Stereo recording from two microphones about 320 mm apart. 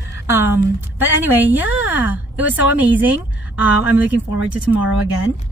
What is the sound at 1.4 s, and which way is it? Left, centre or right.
A woman's voice, centre.